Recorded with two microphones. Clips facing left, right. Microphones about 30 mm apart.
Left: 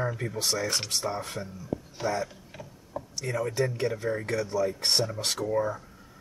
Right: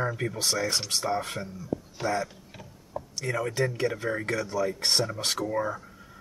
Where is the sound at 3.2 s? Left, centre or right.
Right.